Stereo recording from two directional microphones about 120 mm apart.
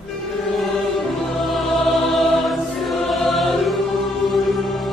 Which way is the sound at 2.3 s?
Centre (ahead or behind).